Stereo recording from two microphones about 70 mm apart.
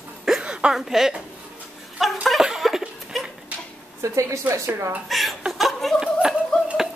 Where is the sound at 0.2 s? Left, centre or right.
Centre.